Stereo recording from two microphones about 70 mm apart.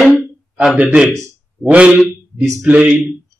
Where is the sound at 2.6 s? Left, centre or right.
Centre.